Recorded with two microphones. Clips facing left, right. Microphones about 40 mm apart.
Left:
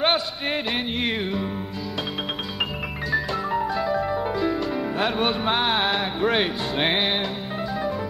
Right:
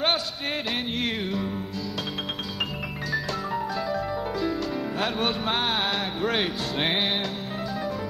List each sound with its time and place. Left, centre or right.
0.0 s music: centre
3.1 s music: centre